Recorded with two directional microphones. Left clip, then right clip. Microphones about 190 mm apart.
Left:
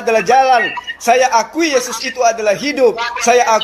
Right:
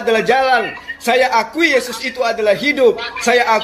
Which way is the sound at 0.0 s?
30° left (ahead or behind).